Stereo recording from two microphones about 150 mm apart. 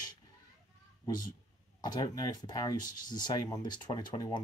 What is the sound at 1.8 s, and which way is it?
Speech, 25° left (ahead or behind).